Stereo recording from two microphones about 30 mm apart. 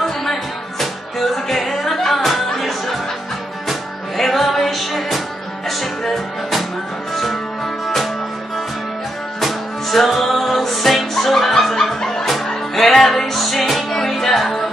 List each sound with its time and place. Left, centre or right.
0.0 s music: centre
1.7 s music: centre
4.2 s music: centre
9.4 s music: centre